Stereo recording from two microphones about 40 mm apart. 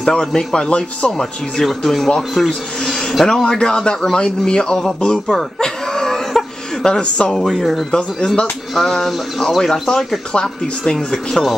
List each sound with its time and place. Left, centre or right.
0.0 s speech: left
0.6 s speech: left
1.1 s speech: centre
3.4 s a man's voice: left
8.7 s speech: centre
10.4 s speech: centre